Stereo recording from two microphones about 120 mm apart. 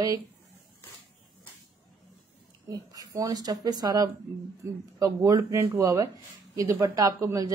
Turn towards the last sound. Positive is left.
turn(degrees=-25)  # may be behind; listen again after turning